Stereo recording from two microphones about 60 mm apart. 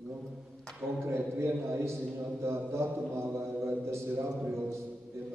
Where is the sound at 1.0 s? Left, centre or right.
Right.